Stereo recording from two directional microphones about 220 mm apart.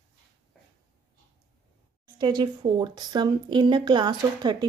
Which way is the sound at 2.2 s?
20° right (ahead or behind).